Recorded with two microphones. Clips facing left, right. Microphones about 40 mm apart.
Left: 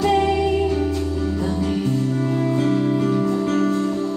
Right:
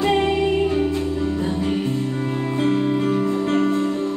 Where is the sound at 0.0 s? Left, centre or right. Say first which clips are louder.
Left 1 dB; right.